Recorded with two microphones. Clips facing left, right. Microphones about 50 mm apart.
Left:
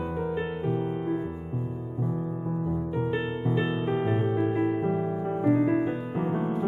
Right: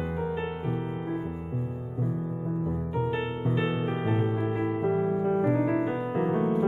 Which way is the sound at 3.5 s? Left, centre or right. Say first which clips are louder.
Left 1 dB; centre.